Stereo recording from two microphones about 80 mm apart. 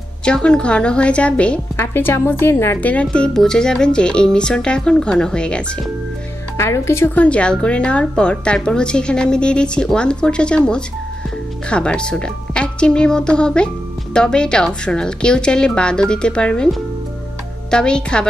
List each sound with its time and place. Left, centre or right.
0.2 s a woman's voice: centre
1.8 s a woman's voice: left
2.8 s a woman's voice: centre
6.5 s speech: left
7.2 s a woman's voice: centre
17.6 s a woman's voice: centre